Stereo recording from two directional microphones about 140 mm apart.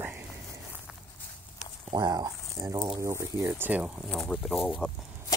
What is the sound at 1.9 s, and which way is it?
Speech, 30° right (ahead or behind).